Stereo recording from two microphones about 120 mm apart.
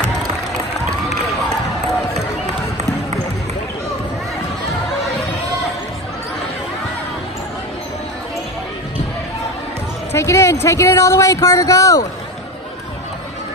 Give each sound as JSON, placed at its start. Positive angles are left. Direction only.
{"t": 10.1, "sound": "speech", "side_deg": 25}